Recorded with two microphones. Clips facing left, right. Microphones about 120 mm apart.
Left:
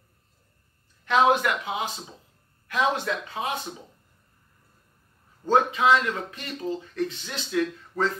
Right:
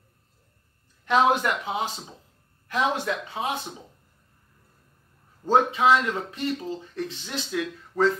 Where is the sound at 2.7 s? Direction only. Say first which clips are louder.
Even; 15° right (ahead or behind).